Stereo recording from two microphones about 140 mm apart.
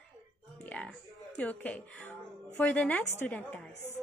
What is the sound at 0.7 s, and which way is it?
A woman's voice, 10° left (ahead or behind).